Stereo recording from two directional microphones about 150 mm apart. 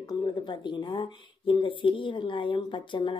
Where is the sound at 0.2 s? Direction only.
30° left (ahead or behind).